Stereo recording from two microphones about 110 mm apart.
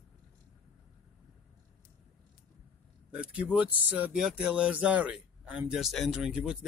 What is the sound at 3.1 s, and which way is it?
Speech, 10° right (ahead or behind).